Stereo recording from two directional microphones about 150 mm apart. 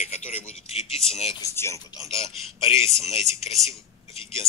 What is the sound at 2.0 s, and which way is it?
Speech, 35° left (ahead or behind).